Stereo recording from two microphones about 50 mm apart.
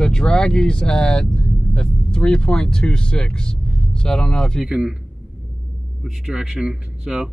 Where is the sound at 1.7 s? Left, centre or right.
Centre.